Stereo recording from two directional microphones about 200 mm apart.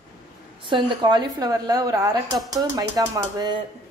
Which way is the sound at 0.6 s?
25° right (ahead or behind).